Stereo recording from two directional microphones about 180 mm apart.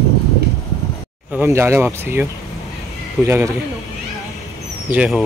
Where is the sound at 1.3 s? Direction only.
10° right (ahead or behind).